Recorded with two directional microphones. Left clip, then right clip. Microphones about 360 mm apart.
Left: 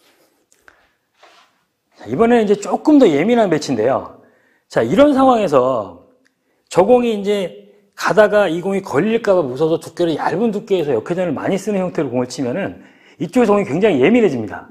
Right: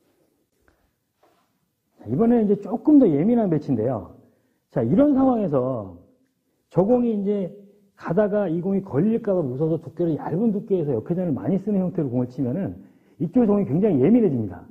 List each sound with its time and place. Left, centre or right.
2.0 s speech: centre
5.7 s speech: left
6.7 s a man's voice: centre